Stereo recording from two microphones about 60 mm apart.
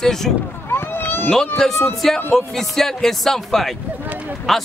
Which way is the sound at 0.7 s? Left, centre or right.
Left.